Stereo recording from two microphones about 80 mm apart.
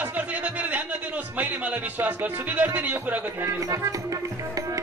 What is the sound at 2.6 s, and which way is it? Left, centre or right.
Speech, right.